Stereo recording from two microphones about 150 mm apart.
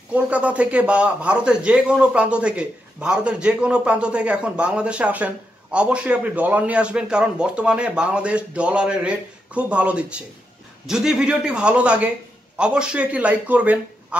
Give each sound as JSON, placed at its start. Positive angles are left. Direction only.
{"t": 0.1, "sound": "a man's voice", "side_deg": -10}